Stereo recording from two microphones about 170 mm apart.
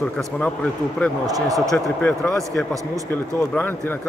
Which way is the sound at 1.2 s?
20° right (ahead or behind).